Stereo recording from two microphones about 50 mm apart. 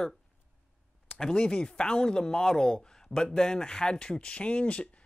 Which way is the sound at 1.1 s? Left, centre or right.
Centre.